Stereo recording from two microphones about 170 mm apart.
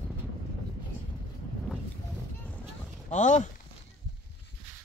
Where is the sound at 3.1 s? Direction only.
45° left (ahead or behind).